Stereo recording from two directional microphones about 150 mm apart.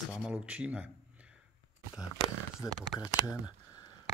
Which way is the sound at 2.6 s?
Centre (ahead or behind).